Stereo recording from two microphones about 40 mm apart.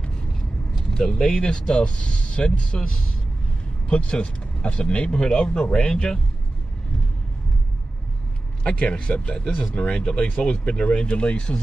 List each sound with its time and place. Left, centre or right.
0.8 s speech: centre
3.9 s speech: left
8.6 s speech: left